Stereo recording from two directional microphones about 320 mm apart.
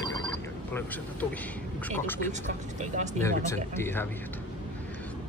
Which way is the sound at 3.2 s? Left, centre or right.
Centre.